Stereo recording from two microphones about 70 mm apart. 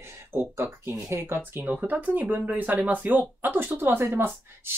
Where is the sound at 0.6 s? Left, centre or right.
Right.